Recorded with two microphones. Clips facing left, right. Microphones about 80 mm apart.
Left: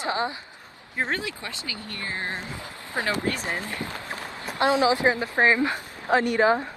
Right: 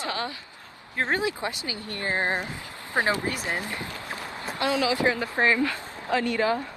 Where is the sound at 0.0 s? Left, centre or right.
Left.